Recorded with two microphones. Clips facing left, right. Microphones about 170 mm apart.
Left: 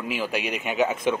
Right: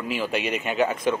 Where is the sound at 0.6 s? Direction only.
15° left (ahead or behind).